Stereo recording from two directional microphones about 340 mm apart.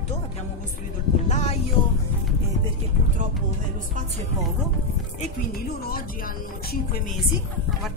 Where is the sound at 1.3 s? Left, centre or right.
Centre.